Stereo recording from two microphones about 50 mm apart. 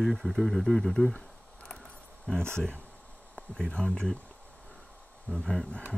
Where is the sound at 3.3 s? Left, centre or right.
Centre.